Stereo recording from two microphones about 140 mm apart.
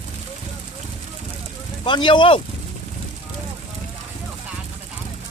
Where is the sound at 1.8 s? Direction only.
35° left (ahead or behind).